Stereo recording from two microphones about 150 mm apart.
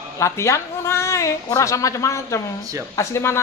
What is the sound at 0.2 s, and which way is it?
A man's voice, 20° left (ahead or behind).